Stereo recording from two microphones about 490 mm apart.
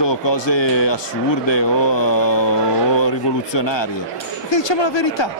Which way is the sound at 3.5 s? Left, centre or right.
Left.